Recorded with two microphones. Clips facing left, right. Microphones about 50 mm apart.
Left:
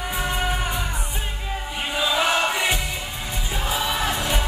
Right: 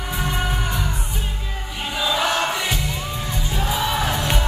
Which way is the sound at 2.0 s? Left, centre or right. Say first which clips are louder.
Even; centre.